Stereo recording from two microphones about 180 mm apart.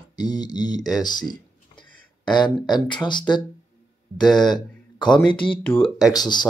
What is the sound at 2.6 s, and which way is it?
Speech, 25° left (ahead or behind).